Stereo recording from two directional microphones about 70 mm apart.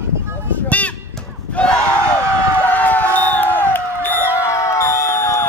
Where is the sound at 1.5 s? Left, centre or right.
Centre.